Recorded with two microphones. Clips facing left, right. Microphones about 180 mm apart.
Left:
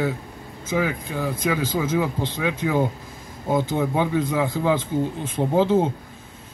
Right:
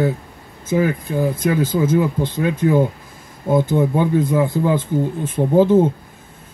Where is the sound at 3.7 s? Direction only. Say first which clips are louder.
Right 5 dB; 55° right (ahead or behind).